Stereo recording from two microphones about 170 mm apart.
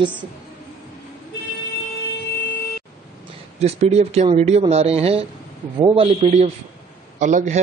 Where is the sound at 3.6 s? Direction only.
40° right (ahead or behind).